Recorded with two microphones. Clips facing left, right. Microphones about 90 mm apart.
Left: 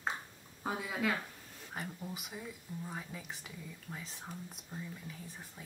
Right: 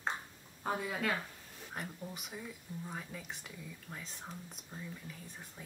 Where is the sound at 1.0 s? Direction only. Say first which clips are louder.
Left 1 dB; 5° left (ahead or behind).